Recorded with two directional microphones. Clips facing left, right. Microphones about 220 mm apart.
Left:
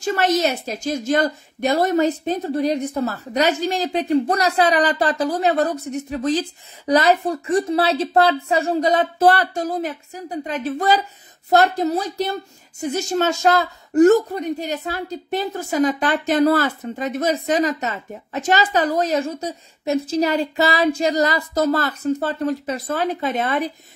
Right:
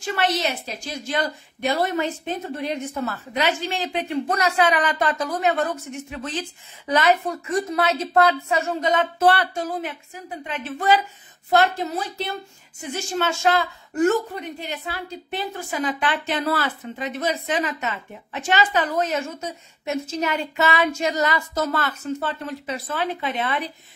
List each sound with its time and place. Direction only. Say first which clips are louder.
0.0 s speech: left 5 dB; 40° left (ahead or behind)